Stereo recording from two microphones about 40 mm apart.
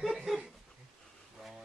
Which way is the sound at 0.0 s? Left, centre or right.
Centre.